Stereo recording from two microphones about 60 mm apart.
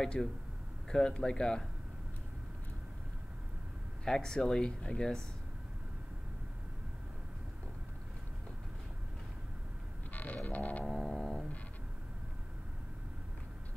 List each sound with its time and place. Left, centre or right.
0.0 s speech: centre
4.0 s speech: centre
10.1 s vehicle: left
10.9 s a sound: centre